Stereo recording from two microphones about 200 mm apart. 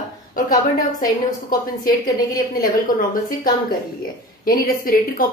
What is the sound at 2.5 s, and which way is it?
A woman's voice, 45° left (ahead or behind).